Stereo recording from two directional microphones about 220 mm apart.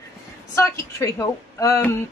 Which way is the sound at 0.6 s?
15° left (ahead or behind).